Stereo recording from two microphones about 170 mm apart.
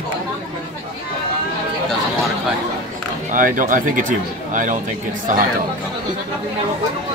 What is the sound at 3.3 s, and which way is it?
Speech, 50° right (ahead or behind).